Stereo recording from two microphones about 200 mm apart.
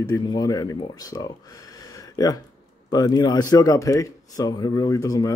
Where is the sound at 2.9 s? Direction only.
20° left (ahead or behind).